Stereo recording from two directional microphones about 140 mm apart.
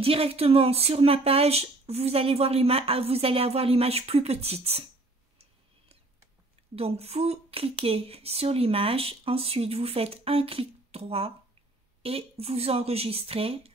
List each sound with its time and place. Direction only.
0.0 s speech: 45° right (ahead or behind)
6.7 s speech: 45° right (ahead or behind)